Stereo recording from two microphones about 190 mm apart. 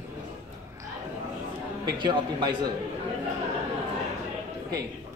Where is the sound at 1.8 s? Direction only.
20° right (ahead or behind).